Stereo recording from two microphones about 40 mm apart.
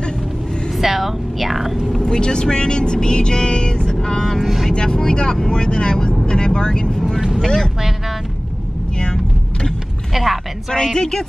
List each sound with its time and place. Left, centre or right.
0.7 s speech: centre
2.0 s speech: left
4.4 s speech: centre
4.7 s speech: left
9.0 s vehicle: left
10.1 s a sound: centre
10.7 s speech: centre